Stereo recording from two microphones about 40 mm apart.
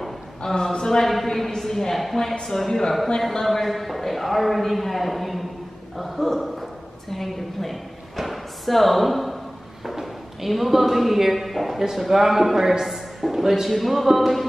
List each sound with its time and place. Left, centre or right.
0.4 s a man's voice: centre
5.9 s a sound: centre
9.8 s a man's voice: centre